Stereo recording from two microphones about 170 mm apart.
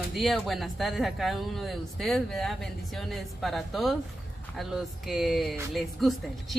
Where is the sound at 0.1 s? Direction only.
Centre (ahead or behind).